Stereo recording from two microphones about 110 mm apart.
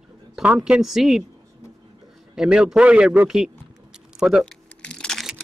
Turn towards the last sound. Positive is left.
turn(degrees=5)  # may be behind; listen again after turning